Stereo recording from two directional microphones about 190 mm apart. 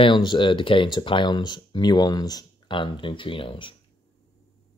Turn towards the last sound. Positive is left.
turn(degrees=25)  # may be behind; listen again after turning